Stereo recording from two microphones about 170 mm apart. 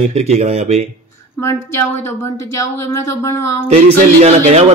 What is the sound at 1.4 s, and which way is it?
Speech, 15° left (ahead or behind).